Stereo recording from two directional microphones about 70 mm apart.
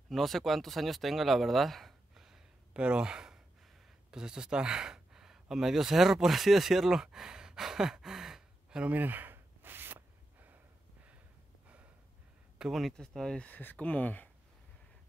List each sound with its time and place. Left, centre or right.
0.1 s speech: centre
8.9 s a sound: right
12.5 s speech: centre
12.9 s speech: centre
13.5 s speech: left